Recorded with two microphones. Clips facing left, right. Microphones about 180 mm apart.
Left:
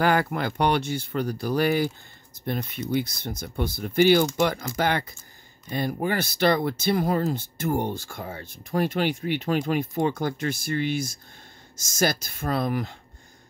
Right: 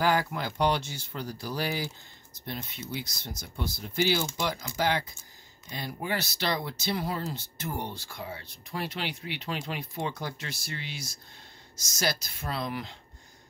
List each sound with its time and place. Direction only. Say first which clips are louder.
0.0 s speech: left 4 dB; 55° left (ahead or behind)